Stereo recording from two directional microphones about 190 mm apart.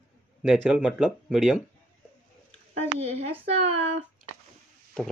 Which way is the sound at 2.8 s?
35° right (ahead or behind).